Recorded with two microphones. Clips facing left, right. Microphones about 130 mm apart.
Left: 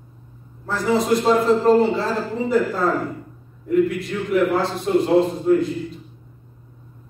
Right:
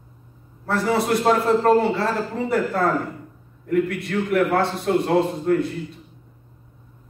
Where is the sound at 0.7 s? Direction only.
60° right (ahead or behind).